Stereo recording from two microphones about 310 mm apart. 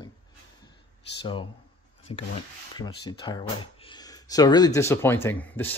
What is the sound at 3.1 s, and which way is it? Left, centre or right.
Speech, centre.